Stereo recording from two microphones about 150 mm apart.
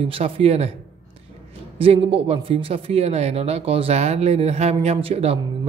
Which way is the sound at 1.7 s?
40° right (ahead or behind).